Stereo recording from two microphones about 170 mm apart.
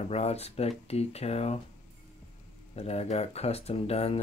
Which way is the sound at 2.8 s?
35° left (ahead or behind).